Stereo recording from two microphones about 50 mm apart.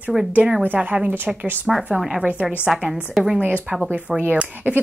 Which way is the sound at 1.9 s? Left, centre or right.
Centre.